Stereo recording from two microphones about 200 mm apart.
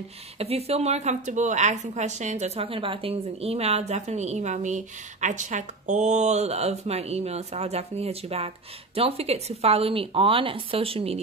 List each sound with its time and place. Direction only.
0.4 s a woman's voice: 30° right (ahead or behind)